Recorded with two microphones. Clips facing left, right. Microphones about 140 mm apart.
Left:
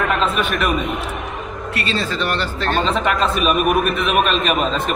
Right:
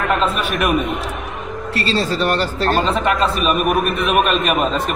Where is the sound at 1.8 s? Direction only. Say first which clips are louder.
Right 4 dB; 35° right (ahead or behind).